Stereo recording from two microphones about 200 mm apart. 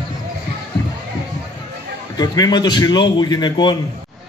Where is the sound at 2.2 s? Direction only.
20° left (ahead or behind).